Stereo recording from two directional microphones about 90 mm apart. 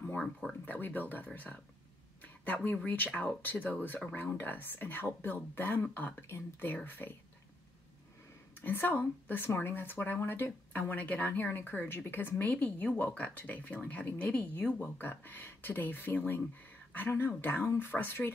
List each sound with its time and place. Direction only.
0.0 s a sound: 20° left (ahead or behind)
0.7 s speech: 20° left (ahead or behind)
8.5 s speech: 20° left (ahead or behind)